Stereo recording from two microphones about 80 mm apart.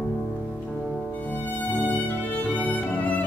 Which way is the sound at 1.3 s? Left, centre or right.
Left.